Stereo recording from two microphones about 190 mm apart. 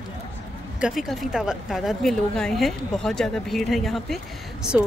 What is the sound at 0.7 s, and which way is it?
A woman's voice, 5° right (ahead or behind).